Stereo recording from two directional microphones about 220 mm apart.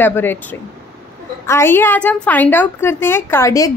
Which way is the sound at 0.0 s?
10° left (ahead or behind).